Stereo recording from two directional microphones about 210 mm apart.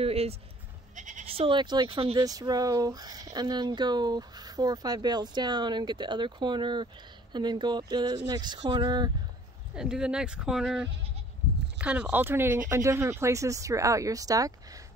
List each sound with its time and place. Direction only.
0.0 s speech: 30° right (ahead or behind)
9.8 s speech: 5° right (ahead or behind)